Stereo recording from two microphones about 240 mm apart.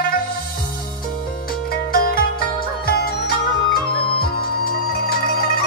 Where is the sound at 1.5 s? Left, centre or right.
Left.